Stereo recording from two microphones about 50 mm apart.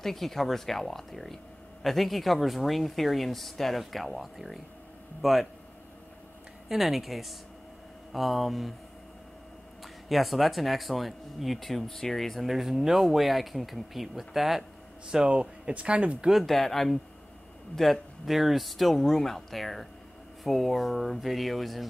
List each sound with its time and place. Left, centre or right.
0.0 s speech: centre
6.7 s speech: centre
10.0 s speech: centre
15.0 s speech: centre
16.4 s speech: centre